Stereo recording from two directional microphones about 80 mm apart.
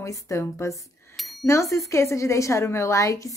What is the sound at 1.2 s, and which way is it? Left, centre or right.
Bicycle bell, centre.